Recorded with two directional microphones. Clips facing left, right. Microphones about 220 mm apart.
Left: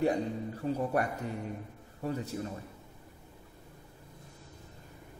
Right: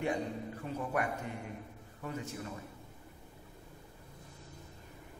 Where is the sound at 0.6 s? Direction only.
30° left (ahead or behind).